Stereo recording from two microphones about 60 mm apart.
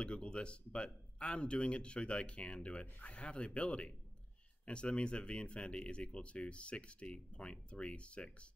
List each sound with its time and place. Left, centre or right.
0.0 s speech: centre